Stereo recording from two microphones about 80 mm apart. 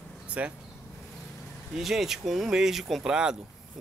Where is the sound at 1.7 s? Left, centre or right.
Centre.